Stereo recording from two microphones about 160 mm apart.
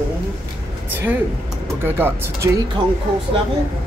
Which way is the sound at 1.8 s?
15° right (ahead or behind).